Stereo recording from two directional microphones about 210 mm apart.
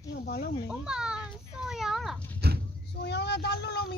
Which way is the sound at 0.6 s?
5° right (ahead or behind).